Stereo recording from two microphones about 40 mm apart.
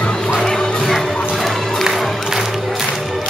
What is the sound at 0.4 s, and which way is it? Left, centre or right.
Music, centre.